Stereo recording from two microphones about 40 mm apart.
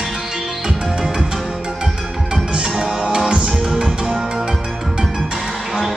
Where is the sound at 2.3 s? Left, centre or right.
Right.